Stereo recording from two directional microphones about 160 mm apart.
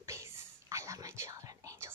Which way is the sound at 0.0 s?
20° right (ahead or behind).